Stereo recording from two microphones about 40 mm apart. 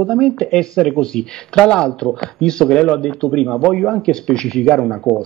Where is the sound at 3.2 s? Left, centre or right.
Centre.